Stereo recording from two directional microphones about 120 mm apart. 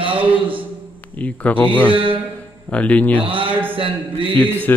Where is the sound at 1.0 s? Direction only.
15° left (ahead or behind).